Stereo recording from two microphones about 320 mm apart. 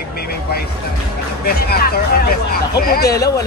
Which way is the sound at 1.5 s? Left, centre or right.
Left.